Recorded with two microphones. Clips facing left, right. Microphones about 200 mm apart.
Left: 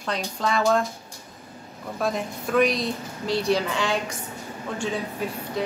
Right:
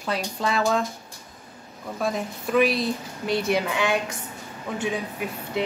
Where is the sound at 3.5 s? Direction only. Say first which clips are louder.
Even; 15° right (ahead or behind).